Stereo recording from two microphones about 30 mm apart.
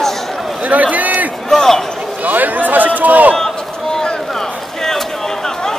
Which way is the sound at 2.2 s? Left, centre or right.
Right.